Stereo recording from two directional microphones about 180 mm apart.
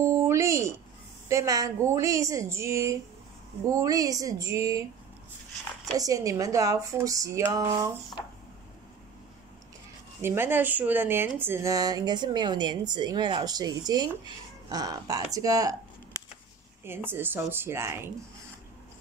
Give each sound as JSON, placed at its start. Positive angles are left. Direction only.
{"t": 0.0, "sound": "a sound", "side_deg": -15}
{"t": 1.3, "sound": "a woman's voice", "side_deg": -20}
{"t": 5.9, "sound": "a woman's voice", "side_deg": -20}
{"t": 10.2, "sound": "a woman's voice", "side_deg": -15}
{"t": 16.8, "sound": "a woman's voice", "side_deg": -10}